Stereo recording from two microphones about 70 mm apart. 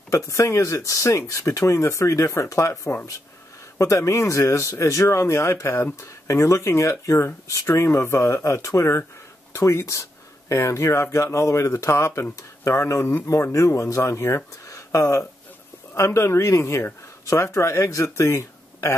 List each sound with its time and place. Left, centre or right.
0.1 s speech: left